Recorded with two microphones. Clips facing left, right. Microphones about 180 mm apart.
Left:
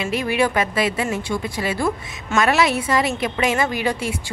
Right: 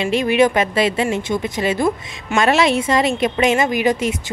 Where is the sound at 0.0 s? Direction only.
25° right (ahead or behind).